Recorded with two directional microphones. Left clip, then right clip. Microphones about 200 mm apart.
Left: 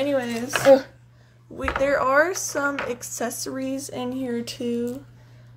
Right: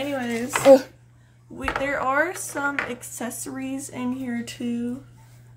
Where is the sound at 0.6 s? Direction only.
25° right (ahead or behind).